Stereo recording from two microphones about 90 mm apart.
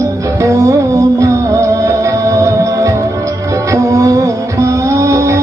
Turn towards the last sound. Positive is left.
turn(degrees=-35)  # may be behind; listen again after turning